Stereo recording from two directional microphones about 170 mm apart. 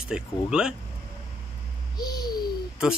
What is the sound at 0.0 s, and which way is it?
Speech, 5° right (ahead or behind).